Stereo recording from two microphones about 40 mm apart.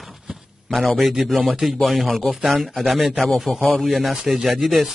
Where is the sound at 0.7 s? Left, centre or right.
Centre.